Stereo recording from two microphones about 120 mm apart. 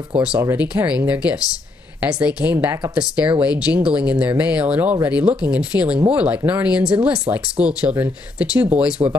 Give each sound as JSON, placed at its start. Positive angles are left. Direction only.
{"t": 0.6, "sound": "speech", "side_deg": -10}
{"t": 2.5, "sound": "speech", "side_deg": -25}
{"t": 2.9, "sound": "speech", "side_deg": -10}